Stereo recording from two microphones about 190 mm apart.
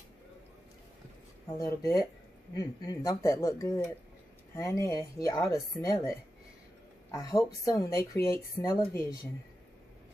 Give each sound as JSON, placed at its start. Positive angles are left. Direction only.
{"t": 1.6, "sound": "a woman's voice", "side_deg": 15}